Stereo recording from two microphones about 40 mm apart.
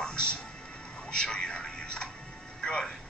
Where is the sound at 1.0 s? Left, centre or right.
Left.